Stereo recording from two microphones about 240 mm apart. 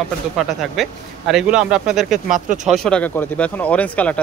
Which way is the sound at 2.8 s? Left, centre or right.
Centre.